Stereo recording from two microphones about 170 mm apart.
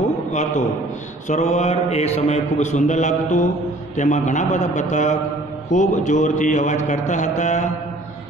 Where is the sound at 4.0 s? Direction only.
45° left (ahead or behind).